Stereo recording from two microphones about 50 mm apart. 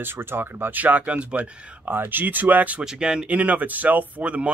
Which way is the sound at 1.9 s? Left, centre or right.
Right.